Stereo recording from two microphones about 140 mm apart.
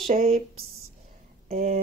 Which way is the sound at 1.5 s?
80° right.